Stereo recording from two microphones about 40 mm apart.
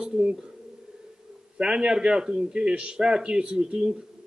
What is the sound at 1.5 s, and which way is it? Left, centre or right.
A man's voice, right.